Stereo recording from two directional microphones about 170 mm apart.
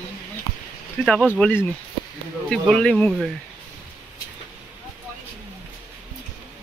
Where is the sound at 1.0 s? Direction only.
5° left (ahead or behind).